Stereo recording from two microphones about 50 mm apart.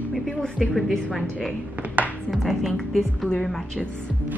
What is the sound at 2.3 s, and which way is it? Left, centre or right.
A woman's voice, centre.